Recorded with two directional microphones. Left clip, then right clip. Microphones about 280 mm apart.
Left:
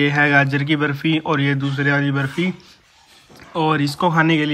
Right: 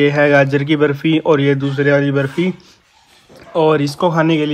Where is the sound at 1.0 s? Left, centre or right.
Centre.